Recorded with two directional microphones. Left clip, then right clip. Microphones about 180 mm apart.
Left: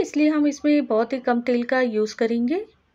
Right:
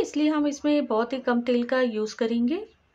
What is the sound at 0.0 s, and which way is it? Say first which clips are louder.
A woman's voice: left 4 dB; 20° left (ahead or behind).